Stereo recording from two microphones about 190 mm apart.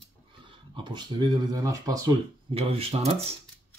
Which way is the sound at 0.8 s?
25° right (ahead or behind).